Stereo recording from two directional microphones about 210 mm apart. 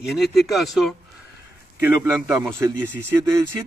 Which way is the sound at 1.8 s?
10° right (ahead or behind).